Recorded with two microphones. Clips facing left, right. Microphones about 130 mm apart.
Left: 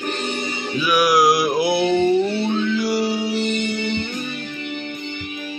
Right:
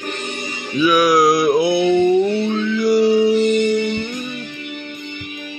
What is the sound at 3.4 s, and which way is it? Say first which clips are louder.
Music: right 7 dB; 40° right (ahead or behind).